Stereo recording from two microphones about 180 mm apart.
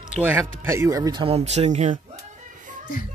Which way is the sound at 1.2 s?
35° right (ahead or behind).